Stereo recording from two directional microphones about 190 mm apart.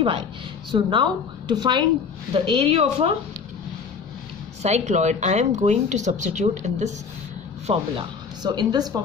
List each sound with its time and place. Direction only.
0.7 s a woman's voice: 25° right (ahead or behind)
4.6 s a woman's voice: 35° right (ahead or behind); by 9.0 s 20° right (ahead or behind)